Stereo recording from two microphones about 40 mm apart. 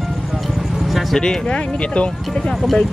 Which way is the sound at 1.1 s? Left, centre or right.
Centre.